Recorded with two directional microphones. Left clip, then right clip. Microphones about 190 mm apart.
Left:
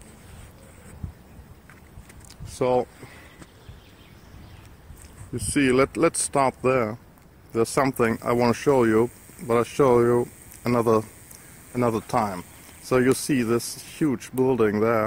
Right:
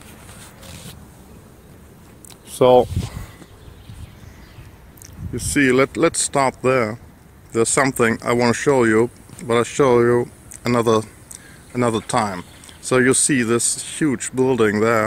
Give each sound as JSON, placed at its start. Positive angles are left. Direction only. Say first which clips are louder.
{"t": 2.6, "sound": "speech", "louder": "right 10 dB", "side_deg": -15}
{"t": 5.3, "sound": "speech", "louder": "right 5 dB", "side_deg": 5}